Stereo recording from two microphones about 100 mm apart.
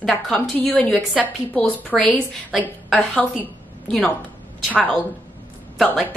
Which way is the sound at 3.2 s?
15° left (ahead or behind).